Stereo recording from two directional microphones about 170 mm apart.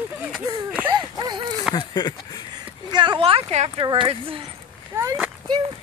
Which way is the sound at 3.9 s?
30° right (ahead or behind).